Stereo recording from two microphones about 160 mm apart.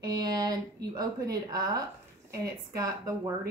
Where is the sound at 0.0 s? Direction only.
25° right (ahead or behind).